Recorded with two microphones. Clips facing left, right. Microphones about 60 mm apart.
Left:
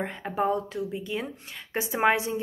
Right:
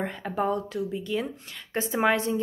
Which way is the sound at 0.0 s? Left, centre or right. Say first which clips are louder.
Even; centre.